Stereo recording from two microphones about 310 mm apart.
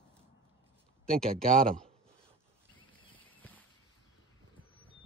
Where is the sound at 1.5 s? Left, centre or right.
Right.